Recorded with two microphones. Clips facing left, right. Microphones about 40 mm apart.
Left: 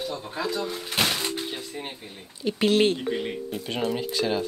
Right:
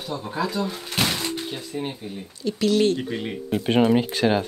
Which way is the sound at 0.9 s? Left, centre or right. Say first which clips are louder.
Right 1 dB; centre.